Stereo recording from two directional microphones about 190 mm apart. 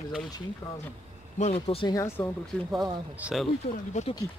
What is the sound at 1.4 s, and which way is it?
Speech, 30° left (ahead or behind).